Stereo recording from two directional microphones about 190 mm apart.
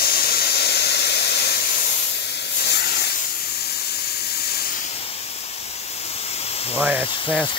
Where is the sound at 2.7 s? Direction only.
60° left (ahead or behind).